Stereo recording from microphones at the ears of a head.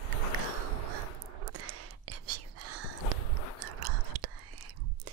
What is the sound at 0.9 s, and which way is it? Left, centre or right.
Whispering, right.